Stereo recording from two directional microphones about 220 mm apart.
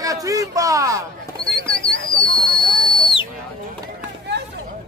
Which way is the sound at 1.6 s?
25° left (ahead or behind).